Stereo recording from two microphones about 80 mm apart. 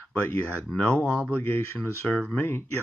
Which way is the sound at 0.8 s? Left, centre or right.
Centre.